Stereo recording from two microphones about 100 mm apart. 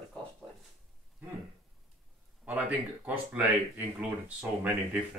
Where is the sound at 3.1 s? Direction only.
15° right (ahead or behind).